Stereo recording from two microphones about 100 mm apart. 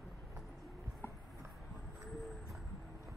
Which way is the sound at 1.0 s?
25° left (ahead or behind).